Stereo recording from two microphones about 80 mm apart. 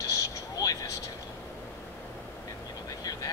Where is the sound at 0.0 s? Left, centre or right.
Left.